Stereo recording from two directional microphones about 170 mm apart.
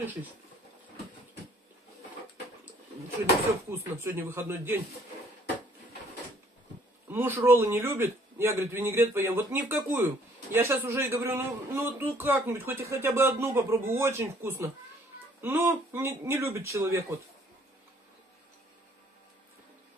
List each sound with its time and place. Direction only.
0.0 s a man's voice: 10° right (ahead or behind)
3.7 s a man's voice: 15° right (ahead or behind)
7.1 s a man's voice: 15° right (ahead or behind)